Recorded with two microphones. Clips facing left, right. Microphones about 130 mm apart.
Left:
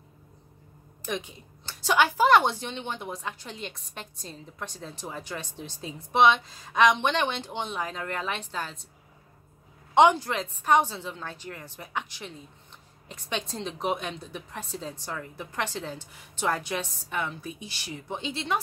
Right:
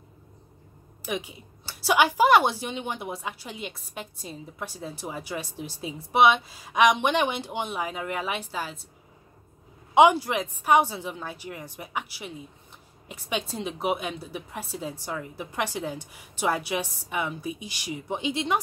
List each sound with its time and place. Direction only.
1.0 s a woman's voice: 10° right (ahead or behind)
9.9 s a woman's voice: 10° right (ahead or behind)